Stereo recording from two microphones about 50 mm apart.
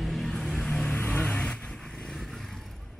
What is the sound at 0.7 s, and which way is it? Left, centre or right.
Vehicle, left.